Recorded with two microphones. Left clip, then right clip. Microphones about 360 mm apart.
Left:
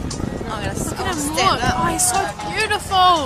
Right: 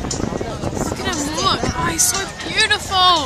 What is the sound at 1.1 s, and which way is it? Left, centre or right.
A woman's voice, centre.